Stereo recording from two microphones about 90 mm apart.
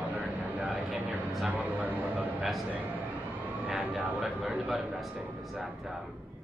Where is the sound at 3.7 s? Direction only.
15° right (ahead or behind).